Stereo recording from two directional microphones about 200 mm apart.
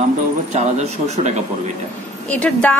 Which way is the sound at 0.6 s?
35° right (ahead or behind).